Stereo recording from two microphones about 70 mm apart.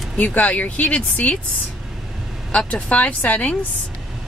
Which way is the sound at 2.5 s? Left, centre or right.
Centre.